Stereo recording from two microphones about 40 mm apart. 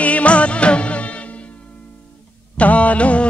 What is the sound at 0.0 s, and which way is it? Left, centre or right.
Music of bollywood, left.